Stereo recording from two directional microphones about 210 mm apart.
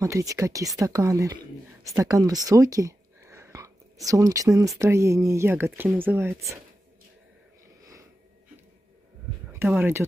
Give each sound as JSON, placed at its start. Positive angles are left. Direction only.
{"t": 0.0, "sound": "speech", "side_deg": -15}
{"t": 7.8, "sound": "a sound", "side_deg": -15}
{"t": 9.5, "sound": "speech", "side_deg": -10}